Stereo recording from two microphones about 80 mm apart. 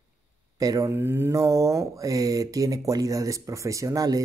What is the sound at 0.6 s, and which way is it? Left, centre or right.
Speech, right.